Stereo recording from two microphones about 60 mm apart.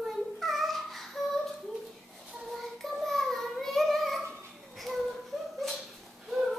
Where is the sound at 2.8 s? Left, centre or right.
Centre.